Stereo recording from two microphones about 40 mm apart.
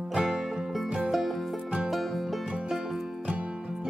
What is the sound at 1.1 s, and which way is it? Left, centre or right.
Music, centre.